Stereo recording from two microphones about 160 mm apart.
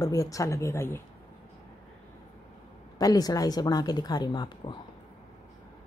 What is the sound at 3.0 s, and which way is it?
A woman's voice, 25° left (ahead or behind).